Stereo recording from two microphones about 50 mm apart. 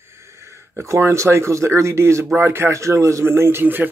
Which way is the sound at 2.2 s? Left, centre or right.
Right.